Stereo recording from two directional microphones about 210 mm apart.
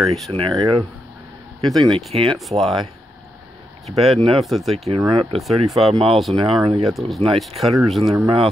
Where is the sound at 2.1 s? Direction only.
25° right (ahead or behind).